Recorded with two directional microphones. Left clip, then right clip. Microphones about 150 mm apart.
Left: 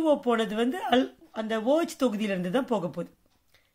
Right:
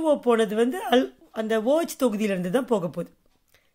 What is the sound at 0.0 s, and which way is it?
A woman's voice, 30° right (ahead or behind).